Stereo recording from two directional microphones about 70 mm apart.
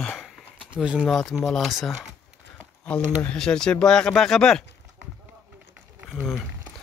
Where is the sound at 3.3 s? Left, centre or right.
Centre.